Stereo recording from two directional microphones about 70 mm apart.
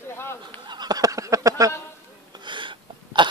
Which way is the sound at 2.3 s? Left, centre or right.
Right.